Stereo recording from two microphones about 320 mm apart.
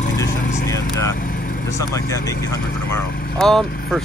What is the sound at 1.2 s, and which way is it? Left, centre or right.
Vehicle, left.